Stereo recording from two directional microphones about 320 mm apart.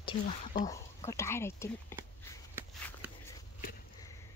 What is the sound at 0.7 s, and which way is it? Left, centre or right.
Speech, centre.